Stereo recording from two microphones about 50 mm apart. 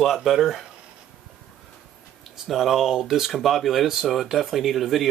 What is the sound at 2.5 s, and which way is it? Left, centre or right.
Speech, centre.